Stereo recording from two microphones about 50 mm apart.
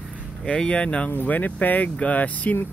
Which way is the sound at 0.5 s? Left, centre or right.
Left.